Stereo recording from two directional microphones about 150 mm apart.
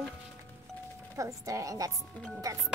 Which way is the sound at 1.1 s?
20° right (ahead or behind).